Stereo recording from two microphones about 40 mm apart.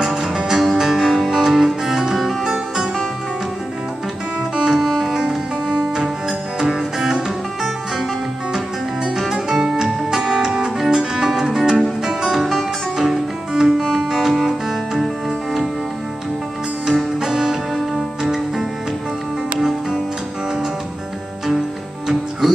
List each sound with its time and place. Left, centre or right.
0.0 s music: centre
4.6 s music: centre
9.3 s music: centre
16.8 s music: centre